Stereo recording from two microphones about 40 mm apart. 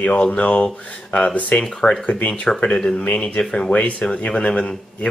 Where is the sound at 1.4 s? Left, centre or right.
Left.